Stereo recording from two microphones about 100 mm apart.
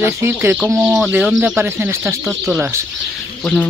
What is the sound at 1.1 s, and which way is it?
Speech, 10° right (ahead or behind).